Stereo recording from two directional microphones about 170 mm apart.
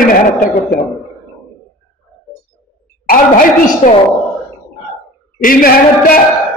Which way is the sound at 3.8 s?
40° left (ahead or behind).